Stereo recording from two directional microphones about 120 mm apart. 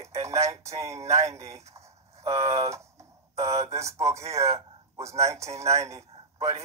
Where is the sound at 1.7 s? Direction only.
25° right (ahead or behind).